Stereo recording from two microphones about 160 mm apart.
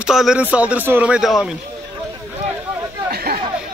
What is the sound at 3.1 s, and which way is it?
Chatter, 70° right (ahead or behind).